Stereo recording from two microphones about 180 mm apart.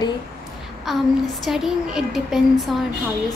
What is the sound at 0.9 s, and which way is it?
A woman's voice, centre (ahead or behind).